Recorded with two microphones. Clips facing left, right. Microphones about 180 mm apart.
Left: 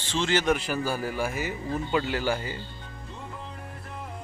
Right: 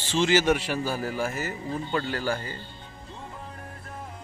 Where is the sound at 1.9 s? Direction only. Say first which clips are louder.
Left 2 dB; 10° left (ahead or behind).